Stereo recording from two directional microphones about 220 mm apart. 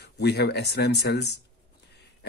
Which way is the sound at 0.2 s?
50° left (ahead or behind).